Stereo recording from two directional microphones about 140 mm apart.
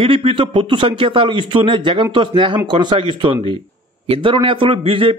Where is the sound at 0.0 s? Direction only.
40° right (ahead or behind).